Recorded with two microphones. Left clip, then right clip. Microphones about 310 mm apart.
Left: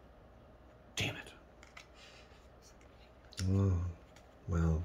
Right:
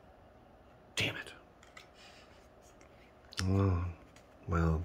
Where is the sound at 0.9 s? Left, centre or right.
Centre.